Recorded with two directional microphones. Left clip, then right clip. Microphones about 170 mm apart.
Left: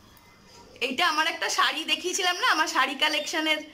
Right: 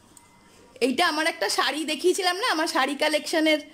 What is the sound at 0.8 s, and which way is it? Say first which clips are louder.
A woman's voice: right 1 dB; 30° right (ahead or behind).